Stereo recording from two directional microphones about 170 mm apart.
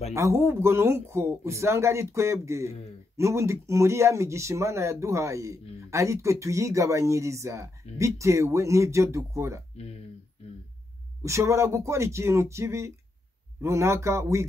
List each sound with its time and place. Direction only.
0.1 s speech: 15° right (ahead or behind)
11.2 s speech: 15° right (ahead or behind)